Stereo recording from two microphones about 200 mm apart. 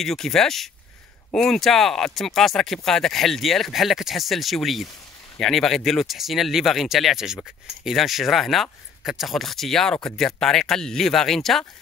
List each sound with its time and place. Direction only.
0.0 s speech: centre (ahead or behind)